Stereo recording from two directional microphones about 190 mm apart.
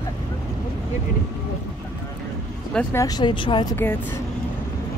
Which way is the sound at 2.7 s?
10° left (ahead or behind).